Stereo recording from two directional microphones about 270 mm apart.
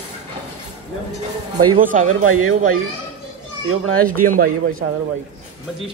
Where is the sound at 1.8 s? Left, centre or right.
Right.